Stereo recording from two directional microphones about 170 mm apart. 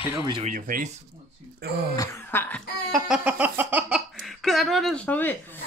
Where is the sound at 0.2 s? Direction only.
30° right (ahead or behind).